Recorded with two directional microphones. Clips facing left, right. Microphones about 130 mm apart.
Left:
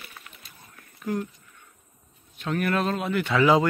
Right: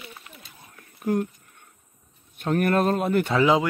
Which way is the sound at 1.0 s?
50° right (ahead or behind).